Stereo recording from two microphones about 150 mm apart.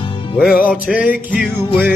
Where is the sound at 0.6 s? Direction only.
10° right (ahead or behind).